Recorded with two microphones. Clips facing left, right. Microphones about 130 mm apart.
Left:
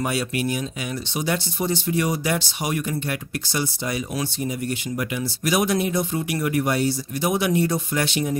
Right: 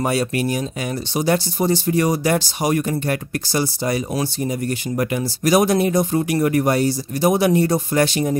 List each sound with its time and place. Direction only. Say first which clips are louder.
0.0 s speech: right 4 dB; 40° right (ahead or behind)